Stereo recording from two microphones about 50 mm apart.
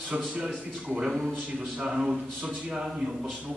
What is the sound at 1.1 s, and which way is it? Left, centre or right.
Speech, centre.